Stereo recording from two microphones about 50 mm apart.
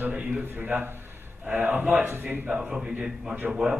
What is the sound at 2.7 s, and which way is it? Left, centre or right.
A man's voice, centre.